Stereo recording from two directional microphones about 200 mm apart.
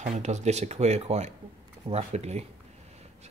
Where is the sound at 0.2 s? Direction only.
35° right (ahead or behind).